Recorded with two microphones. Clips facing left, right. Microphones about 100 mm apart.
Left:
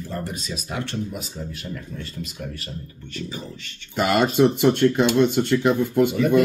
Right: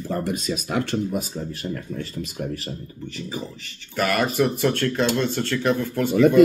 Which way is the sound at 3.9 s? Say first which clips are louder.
Left 2 dB; 20° left (ahead or behind).